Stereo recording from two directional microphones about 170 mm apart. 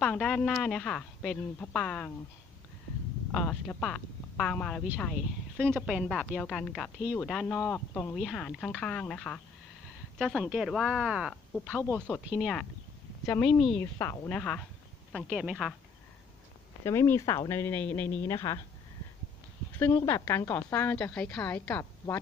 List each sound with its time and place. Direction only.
0.0 s a woman's voice: 5° left (ahead or behind)
3.3 s a woman's voice: 10° left (ahead or behind)
13.2 s a woman's voice: 15° left (ahead or behind)
13.5 s a woman's voice: centre (ahead or behind)
13.7 s a woman's voice: 15° left (ahead or behind)
15.2 s a woman's voice: 5° right (ahead or behind)
16.8 s a woman's voice: 15° left (ahead or behind)
20.1 s a woman's voice: 15° left (ahead or behind)